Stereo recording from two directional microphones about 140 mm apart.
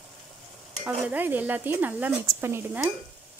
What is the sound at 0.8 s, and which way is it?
Speech, 10° right (ahead or behind).